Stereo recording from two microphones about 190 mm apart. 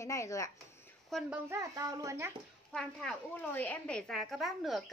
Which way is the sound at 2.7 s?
Centre (ahead or behind).